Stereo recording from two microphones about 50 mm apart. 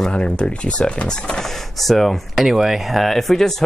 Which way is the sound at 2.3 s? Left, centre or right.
Centre.